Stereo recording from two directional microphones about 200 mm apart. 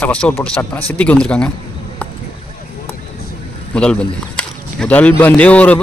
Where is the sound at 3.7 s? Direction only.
5° left (ahead or behind).